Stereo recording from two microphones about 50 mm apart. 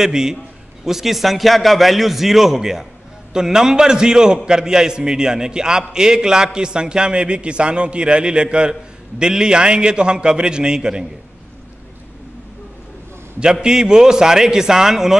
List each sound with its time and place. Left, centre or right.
0.0 s a man's voice: centre
13.4 s a man's voice: centre